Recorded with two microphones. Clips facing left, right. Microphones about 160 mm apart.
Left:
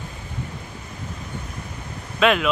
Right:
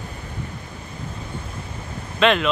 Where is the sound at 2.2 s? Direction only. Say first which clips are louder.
Even; 5° left (ahead or behind).